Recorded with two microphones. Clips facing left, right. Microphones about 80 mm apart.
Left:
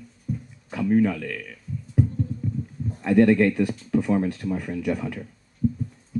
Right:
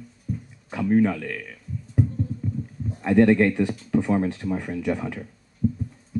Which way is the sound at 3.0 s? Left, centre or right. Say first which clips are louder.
Even; right.